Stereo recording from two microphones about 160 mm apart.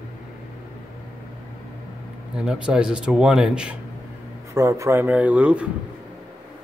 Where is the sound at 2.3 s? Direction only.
5° right (ahead or behind).